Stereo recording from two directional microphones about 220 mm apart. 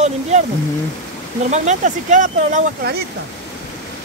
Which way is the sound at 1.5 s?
35° right (ahead or behind).